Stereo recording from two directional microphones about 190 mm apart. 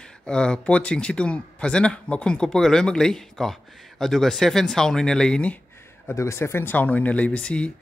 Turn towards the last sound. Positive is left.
turn(degrees=5)  # may be behind; listen again after turning